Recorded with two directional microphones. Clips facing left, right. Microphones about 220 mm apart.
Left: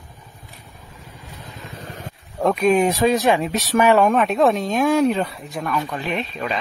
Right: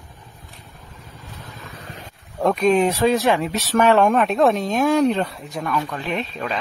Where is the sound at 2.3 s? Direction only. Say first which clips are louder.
Even; 5° left (ahead or behind).